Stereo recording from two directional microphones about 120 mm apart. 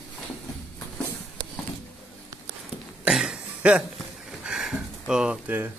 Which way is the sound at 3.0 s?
5° right (ahead or behind).